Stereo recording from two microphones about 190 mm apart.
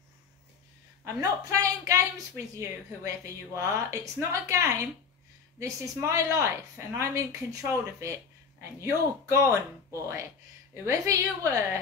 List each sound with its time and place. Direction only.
1.0 s a woman's voice: 15° right (ahead or behind)